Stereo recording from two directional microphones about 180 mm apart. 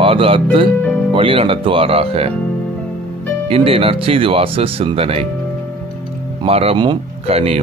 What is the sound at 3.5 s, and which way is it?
Speech, 30° right (ahead or behind).